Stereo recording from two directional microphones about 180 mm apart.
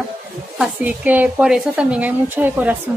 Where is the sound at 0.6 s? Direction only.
10° right (ahead or behind).